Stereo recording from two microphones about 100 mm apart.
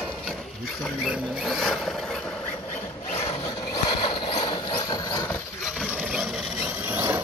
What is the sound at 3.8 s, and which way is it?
Vehicle, 55° left (ahead or behind).